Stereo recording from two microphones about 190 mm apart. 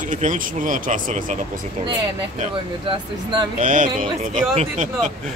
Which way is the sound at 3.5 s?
45° right (ahead or behind).